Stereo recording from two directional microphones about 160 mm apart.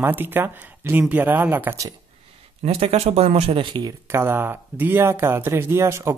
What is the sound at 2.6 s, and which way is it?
Speech, 35° right (ahead or behind).